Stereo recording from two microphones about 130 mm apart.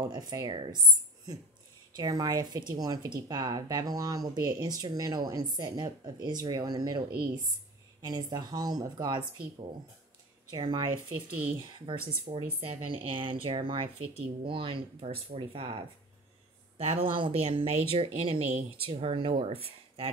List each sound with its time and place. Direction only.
0.0 s a woman's voice: 30° right (ahead or behind)
2.0 s speech: 30° right (ahead or behind)
8.0 s a woman's voice: 30° right (ahead or behind)
10.5 s a woman's voice: 35° right (ahead or behind)
11.9 s a woman's voice: 40° right (ahead or behind)